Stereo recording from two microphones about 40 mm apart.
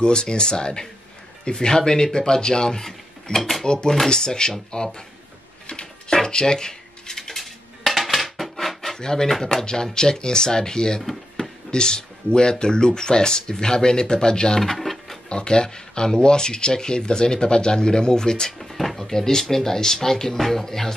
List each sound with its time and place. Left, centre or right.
0.0 s speech: left
3.3 s speech: centre
3.6 s speech: centre
5.7 s a sound: left
6.1 s dishes: centre
9.0 s speech: centre
11.0 s drawer open or close: centre
11.7 s speech: centre
14.6 s a sound: centre
15.2 s speech: left
18.6 s speech: centre